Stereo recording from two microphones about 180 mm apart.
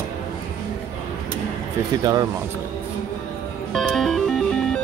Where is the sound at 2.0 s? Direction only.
20° right (ahead or behind).